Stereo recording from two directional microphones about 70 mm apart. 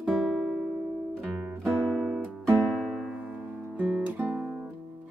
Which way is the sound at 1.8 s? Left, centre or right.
Centre.